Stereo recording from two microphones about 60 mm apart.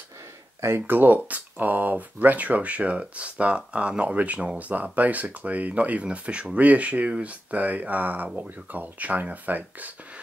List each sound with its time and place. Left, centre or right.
0.6 s speech: right
0.8 s speech: right